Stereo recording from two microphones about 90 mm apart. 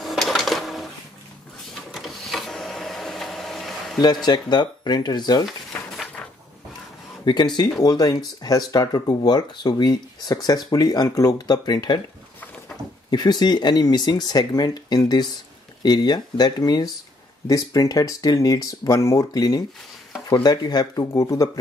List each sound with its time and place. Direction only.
0.0 s a sound: centre (ahead or behind)
1.9 s printer: centre (ahead or behind)
4.0 s speech: 50° left (ahead or behind)
5.4 s a sound: centre (ahead or behind)
7.2 s speech: 55° left (ahead or behind)
13.1 s speech: 50° left (ahead or behind)